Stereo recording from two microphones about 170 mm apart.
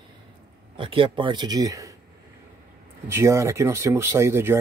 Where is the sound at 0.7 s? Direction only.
30° right (ahead or behind).